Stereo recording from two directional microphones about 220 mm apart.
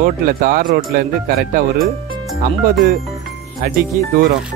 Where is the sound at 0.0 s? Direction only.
40° right (ahead or behind).